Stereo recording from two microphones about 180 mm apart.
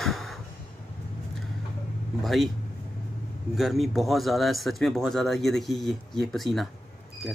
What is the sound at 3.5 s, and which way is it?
Speech, centre (ahead or behind).